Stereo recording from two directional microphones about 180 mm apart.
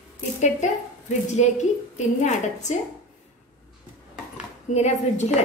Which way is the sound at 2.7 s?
40° left (ahead or behind).